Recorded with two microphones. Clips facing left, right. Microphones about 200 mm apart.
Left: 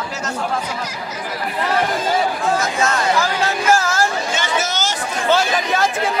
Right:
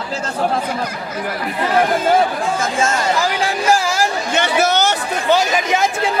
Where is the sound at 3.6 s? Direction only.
15° right (ahead or behind).